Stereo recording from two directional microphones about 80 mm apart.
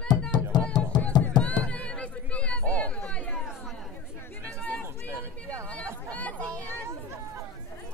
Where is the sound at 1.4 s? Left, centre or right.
Centre.